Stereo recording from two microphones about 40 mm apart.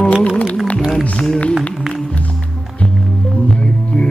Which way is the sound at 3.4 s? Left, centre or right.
Left.